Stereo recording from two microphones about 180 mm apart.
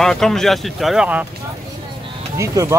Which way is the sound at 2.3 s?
15° right (ahead or behind).